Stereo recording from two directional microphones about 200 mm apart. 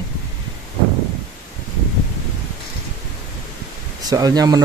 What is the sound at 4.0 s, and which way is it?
Speech, 20° right (ahead or behind).